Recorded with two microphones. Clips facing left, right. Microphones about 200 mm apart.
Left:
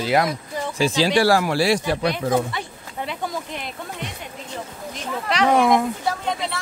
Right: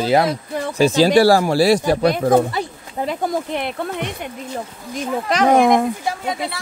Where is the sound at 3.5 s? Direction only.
65° right (ahead or behind).